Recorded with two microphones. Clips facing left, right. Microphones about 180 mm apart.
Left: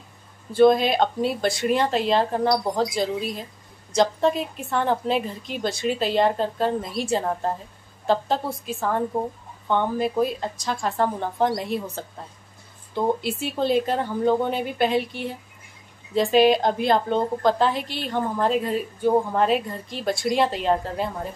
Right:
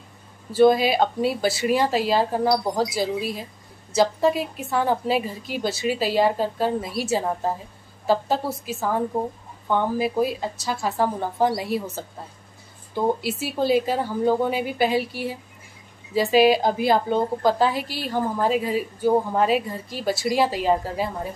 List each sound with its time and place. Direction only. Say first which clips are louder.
0.5 s a woman's voice: even; 5° right (ahead or behind)